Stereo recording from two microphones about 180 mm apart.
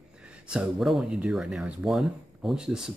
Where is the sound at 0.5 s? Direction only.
5° right (ahead or behind).